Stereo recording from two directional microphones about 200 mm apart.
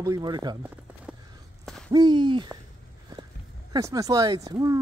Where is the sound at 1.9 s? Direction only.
20° right (ahead or behind).